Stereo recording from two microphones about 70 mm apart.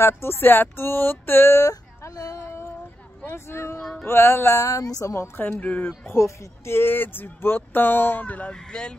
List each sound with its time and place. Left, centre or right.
0.0 s speech: left
1.6 s speech: left
2.3 s child singing: left
3.3 s speech: left
4.0 s music: left
5.4 s speech: left
6.1 s speech: left; by 8.9 s centre